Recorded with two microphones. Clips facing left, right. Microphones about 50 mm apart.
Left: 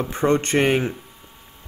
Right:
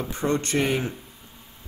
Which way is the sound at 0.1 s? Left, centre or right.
Left.